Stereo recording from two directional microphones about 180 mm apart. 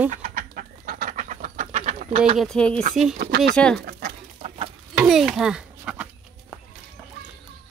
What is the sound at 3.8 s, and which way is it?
Bird, 55° right (ahead or behind).